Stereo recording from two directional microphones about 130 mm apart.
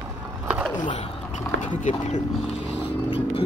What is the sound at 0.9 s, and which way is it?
Speech, 60° left (ahead or behind).